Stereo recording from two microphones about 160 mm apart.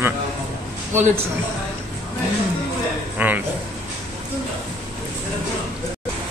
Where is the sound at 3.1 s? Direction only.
10° right (ahead or behind).